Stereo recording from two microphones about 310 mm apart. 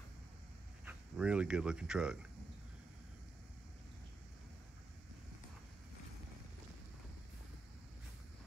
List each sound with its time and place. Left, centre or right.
0.8 s speech: centre